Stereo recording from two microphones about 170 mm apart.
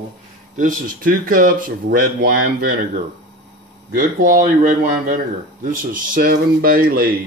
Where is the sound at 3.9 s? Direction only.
50° right (ahead or behind).